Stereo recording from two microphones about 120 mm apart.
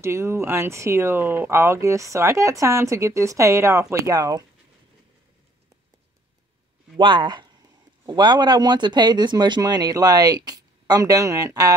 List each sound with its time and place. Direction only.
0.0 s speech: 20° right (ahead or behind)
7.0 s speech: 40° right (ahead or behind)